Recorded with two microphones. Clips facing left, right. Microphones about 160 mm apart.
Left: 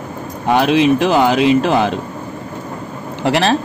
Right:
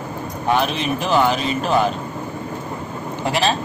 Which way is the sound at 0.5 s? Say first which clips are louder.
Left 8 dB; 85° left.